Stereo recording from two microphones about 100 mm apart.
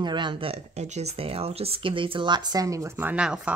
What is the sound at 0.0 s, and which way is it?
Speech, 50° right (ahead or behind).